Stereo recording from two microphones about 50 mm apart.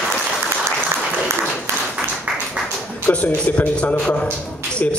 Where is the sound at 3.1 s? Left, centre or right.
Left.